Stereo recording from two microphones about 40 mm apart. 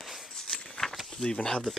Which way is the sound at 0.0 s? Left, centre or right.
Centre.